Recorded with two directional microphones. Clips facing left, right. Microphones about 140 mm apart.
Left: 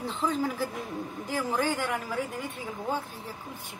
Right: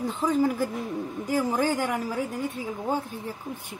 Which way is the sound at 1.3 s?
10° right (ahead or behind).